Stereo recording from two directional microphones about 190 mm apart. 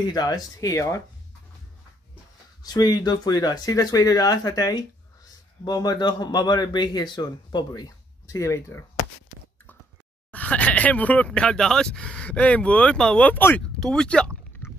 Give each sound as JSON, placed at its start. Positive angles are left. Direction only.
{"t": 0.1, "sound": "speech", "side_deg": 20}
{"t": 2.6, "sound": "speech", "side_deg": 20}
{"t": 10.3, "sound": "speech", "side_deg": 5}